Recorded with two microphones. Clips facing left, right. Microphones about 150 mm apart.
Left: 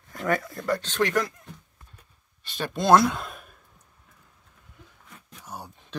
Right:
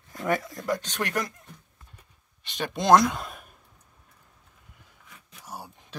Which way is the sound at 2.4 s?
20° right (ahead or behind).